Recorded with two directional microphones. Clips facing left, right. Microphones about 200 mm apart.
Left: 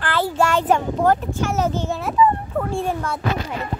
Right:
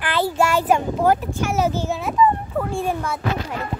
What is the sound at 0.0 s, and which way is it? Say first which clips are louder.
A child's voice: even; 15° right (ahead or behind).